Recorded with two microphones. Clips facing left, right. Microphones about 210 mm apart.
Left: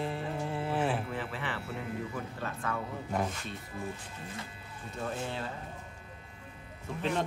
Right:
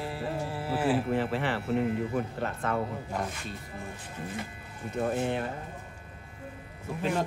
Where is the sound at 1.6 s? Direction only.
60° right (ahead or behind).